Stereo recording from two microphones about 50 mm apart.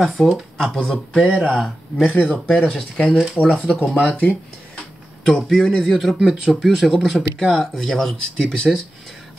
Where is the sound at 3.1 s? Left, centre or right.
Centre.